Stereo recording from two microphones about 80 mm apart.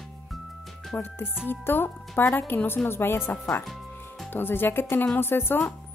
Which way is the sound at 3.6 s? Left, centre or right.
Centre.